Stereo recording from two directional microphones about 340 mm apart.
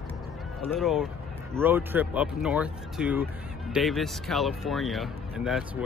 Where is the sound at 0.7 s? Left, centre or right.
Centre.